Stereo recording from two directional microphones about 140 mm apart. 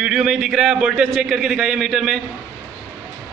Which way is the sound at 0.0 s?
5° right (ahead or behind).